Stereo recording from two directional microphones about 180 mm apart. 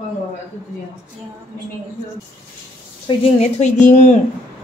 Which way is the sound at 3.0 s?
35° left (ahead or behind).